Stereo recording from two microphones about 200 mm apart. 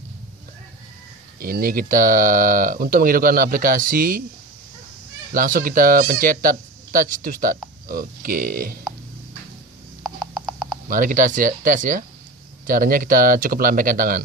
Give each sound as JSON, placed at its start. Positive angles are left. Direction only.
{"t": 1.4, "sound": "speech", "side_deg": -45}
{"t": 5.3, "sound": "speech", "side_deg": -45}
{"t": 10.0, "sound": "mechanisms", "side_deg": 0}
{"t": 10.9, "sound": "speech", "side_deg": -40}